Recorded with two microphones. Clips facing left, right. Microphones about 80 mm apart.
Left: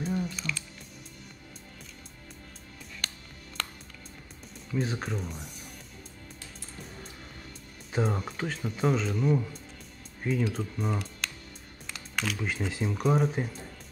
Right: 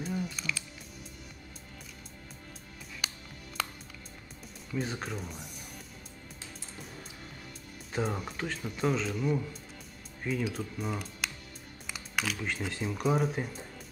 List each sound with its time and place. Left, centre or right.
0.0 s music: centre
3.0 s music: centre
4.7 s speech: centre
7.9 s speech: centre